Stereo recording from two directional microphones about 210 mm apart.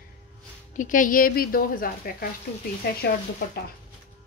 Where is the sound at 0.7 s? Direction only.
40° left (ahead or behind).